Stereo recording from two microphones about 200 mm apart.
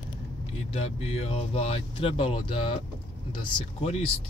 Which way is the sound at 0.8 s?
30° left (ahead or behind).